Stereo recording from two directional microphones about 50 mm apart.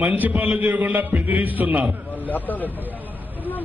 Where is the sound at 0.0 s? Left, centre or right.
Right.